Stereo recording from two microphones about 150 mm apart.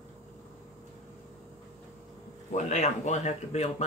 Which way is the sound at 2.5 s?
50° left (ahead or behind).